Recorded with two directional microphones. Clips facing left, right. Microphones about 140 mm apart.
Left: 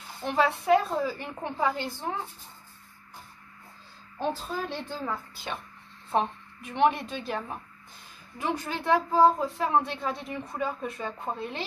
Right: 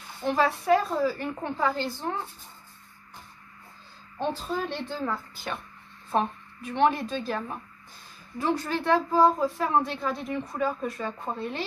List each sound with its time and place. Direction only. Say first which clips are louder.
0.4 s a woman's voice: left 1 dB; 20° left (ahead or behind)
4.6 s a woman's voice: right 2 dB; 10° left (ahead or behind)